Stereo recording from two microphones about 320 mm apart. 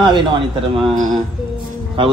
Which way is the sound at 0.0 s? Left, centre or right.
Centre.